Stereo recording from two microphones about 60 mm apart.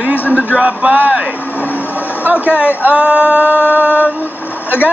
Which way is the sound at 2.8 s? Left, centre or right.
Right.